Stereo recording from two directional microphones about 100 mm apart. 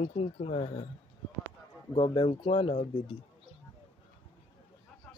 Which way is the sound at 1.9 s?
55° left (ahead or behind).